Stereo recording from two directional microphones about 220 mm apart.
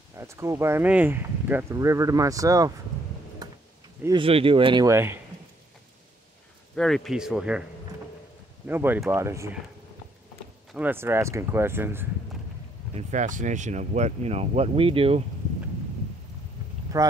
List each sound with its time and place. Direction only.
0.2 s speech: 15° right (ahead or behind)
4.0 s speech: 20° right (ahead or behind)
6.7 s speech: centre (ahead or behind)
8.6 s speech: 10° right (ahead or behind)
10.7 s speech: 10° right (ahead or behind)
12.9 s speech: 35° right (ahead or behind)
16.9 s speech: 15° right (ahead or behind)